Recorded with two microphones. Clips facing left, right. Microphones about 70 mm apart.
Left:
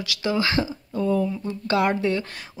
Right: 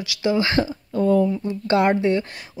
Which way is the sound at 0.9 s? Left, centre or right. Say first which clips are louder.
Right 5 dB; right.